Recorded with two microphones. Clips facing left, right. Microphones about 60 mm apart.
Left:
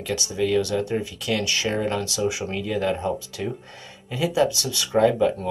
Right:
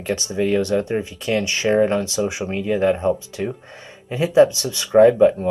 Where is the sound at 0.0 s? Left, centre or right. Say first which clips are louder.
Right 3 dB; right.